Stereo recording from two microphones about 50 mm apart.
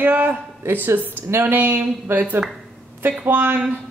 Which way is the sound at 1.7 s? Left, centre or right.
Right.